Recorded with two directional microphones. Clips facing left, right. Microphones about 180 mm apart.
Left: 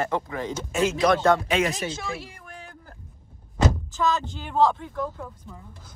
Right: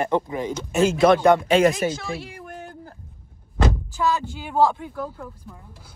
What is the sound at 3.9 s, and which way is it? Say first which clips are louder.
Speech: right 1 dB; 10° right (ahead or behind).